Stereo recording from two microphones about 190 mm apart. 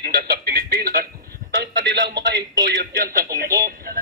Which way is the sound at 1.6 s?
65° right (ahead or behind).